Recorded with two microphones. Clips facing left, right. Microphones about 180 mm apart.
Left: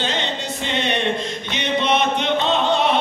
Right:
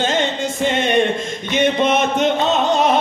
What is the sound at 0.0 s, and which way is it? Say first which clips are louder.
Music: right 6 dB; 50° right (ahead or behind).